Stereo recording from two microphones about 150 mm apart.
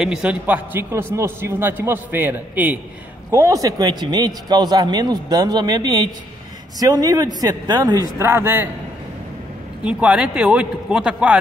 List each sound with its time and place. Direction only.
0.0 s a man's voice: 5° right (ahead or behind)
9.8 s a man's voice: 10° right (ahead or behind)